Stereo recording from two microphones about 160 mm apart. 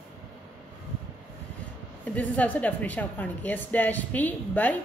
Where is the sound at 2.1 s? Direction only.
10° left (ahead or behind).